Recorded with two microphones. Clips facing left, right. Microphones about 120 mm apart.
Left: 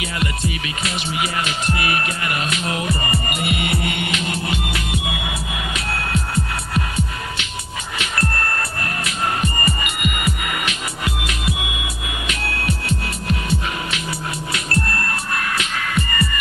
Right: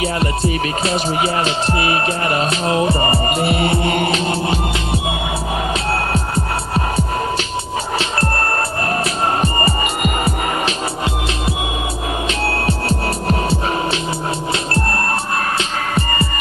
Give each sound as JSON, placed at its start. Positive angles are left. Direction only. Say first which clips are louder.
{"t": 0.2, "sound": "music", "louder": "right 6 dB", "side_deg": -35}
{"t": 9.4, "sound": "music", "louder": "right 5 dB", "side_deg": -35}
{"t": 12.4, "sound": "music", "louder": "right 3 dB", "side_deg": -35}
{"t": 15.9, "sound": "music", "louder": "right 2 dB", "side_deg": -35}